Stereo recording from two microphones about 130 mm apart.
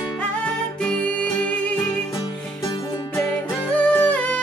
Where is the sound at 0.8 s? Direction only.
10° left (ahead or behind).